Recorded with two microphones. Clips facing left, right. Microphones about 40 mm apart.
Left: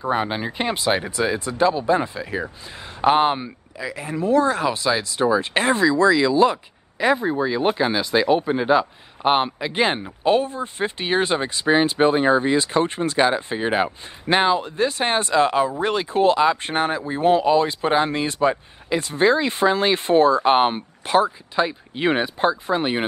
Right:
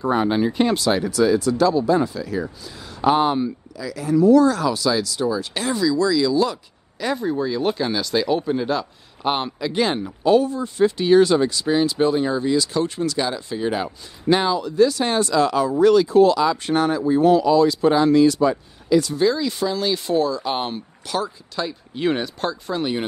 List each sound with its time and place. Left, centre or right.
0.1 s speech: centre